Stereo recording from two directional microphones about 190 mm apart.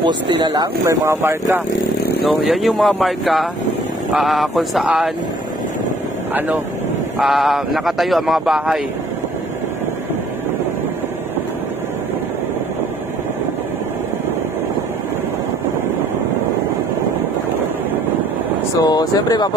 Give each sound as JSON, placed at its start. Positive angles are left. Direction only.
{"t": 0.0, "sound": "speech", "side_deg": -20}
{"t": 2.3, "sound": "speech", "side_deg": 0}
{"t": 7.2, "sound": "speech", "side_deg": 0}
{"t": 18.8, "sound": "speech", "side_deg": 20}